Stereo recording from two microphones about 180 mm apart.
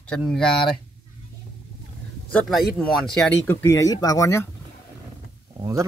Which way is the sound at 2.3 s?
5° left (ahead or behind).